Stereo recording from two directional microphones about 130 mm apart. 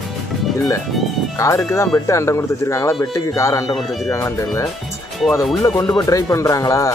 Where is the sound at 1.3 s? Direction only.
25° left (ahead or behind).